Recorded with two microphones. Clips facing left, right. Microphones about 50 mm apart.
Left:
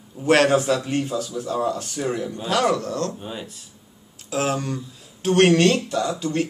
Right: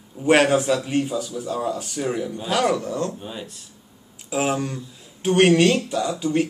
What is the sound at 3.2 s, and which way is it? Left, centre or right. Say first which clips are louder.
Speech: left 1 dB; centre.